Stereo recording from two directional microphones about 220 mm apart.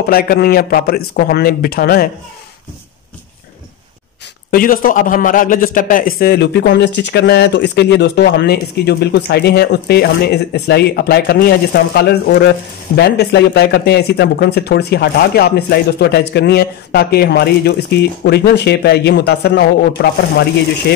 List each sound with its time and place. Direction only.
0.0 s a man's voice: 45° left (ahead or behind)
4.5 s a man's voice: 40° left (ahead or behind)